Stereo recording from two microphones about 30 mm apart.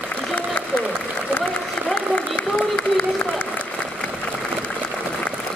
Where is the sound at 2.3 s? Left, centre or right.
Left.